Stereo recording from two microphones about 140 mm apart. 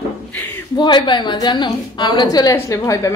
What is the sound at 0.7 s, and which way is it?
A woman's voice, 30° left (ahead or behind).